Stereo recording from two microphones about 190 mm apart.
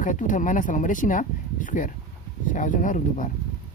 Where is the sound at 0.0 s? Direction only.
40° left (ahead or behind).